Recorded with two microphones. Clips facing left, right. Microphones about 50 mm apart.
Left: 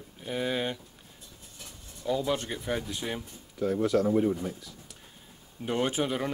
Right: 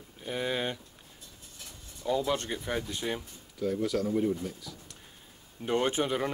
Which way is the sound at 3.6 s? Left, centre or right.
Left.